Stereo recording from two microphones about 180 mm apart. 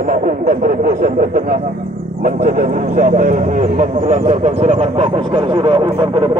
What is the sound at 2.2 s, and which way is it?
Speech, 45° right (ahead or behind).